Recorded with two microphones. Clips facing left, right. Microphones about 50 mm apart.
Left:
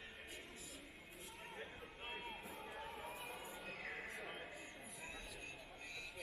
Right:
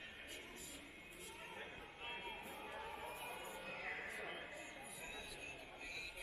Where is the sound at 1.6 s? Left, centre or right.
Centre.